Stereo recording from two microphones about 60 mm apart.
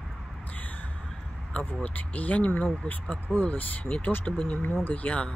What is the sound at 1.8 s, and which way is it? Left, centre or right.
Speech, left.